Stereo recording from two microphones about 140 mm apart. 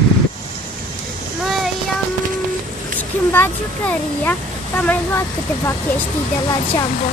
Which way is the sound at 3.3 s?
15° left (ahead or behind).